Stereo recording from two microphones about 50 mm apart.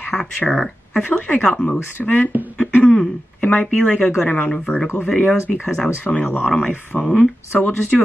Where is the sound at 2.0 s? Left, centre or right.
Left.